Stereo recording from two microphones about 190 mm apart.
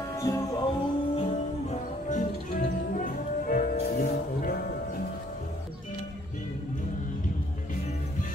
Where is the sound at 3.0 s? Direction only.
50° left (ahead or behind).